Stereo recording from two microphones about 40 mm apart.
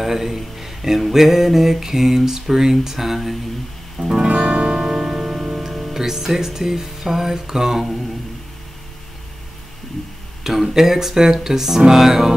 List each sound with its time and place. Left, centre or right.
0.0 s speech: centre
0.4 s music: centre
4.0 s music: centre
4.3 s music: right
4.7 s music: centre
10.4 s music: centre